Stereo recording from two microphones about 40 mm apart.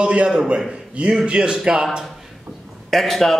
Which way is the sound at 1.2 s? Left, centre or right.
Right.